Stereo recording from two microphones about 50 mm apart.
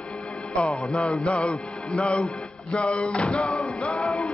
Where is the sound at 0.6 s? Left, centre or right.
Left.